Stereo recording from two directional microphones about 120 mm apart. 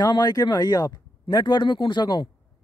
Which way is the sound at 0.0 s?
35° left (ahead or behind).